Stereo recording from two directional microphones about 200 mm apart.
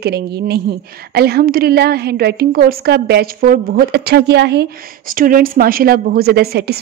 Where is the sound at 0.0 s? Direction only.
55° right (ahead or behind).